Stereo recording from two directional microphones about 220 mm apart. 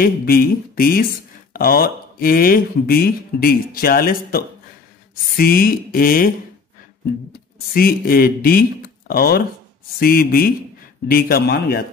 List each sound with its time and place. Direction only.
0.0 s speech: 40° left (ahead or behind)
5.4 s speech: 40° left (ahead or behind)
7.7 s speech: 40° left (ahead or behind)